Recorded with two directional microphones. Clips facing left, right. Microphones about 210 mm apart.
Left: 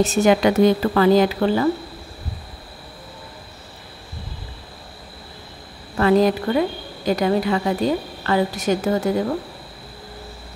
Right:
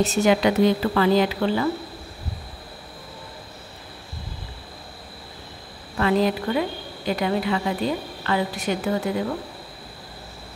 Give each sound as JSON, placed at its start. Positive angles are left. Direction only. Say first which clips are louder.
{"t": 0.0, "sound": "a woman's voice", "louder": "left 3 dB", "side_deg": 50}
{"t": 5.9, "sound": "a woman's voice", "louder": "left 5 dB", "side_deg": 45}